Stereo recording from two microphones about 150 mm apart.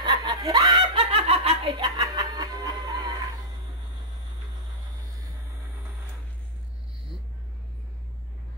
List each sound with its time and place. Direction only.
0.0 s snicker: 25° right (ahead or behind)
1.1 s snicker: 40° right (ahead or behind)
1.8 s music: 25° right (ahead or behind)